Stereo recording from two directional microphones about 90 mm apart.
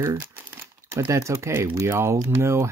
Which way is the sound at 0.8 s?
35° right (ahead or behind).